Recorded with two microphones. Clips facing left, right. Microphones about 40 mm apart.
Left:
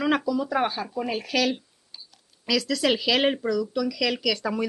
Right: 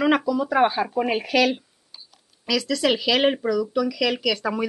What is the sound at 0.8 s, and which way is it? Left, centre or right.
Speech, right.